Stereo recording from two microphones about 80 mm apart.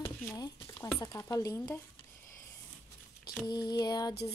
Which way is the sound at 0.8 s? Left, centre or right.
Left.